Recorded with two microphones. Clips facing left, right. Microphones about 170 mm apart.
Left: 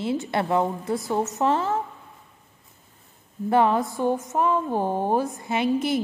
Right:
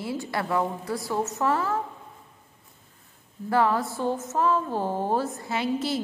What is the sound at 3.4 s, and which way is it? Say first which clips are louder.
A woman's voice: left 3 dB; 20° left (ahead or behind).